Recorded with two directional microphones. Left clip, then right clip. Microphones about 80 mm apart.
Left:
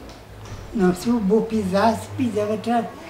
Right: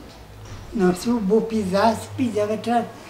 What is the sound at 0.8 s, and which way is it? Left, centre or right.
A woman's voice, centre.